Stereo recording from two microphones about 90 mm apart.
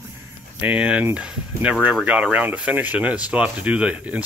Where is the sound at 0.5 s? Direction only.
15° right (ahead or behind).